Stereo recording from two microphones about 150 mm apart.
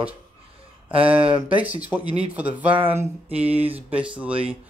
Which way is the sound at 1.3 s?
10° right (ahead or behind).